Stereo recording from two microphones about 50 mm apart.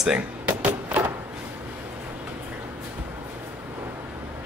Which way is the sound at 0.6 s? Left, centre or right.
Right.